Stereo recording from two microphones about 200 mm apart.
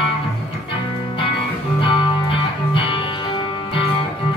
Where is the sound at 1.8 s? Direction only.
25° left (ahead or behind).